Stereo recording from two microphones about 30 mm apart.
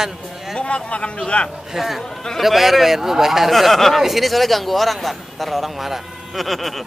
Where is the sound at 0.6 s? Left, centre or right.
Left.